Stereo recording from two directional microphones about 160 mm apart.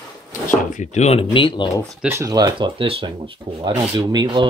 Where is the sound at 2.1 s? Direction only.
20° right (ahead or behind).